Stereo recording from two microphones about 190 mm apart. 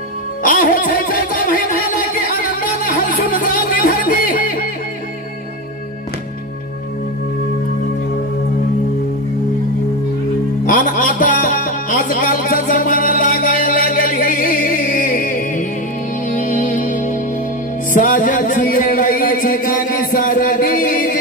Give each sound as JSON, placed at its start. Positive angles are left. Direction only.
{"t": 0.4, "sound": "music", "side_deg": 45}
{"t": 10.6, "sound": "music", "side_deg": 45}